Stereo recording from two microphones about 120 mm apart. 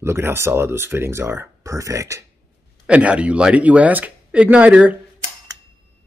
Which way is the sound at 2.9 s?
10° right (ahead or behind).